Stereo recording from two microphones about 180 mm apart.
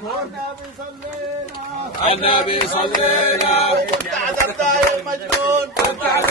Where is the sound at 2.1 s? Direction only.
30° left (ahead or behind).